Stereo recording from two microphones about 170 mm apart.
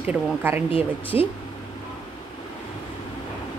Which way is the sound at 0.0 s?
10° right (ahead or behind).